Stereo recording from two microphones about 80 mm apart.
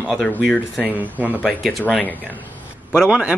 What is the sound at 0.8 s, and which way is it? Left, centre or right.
Speech, right.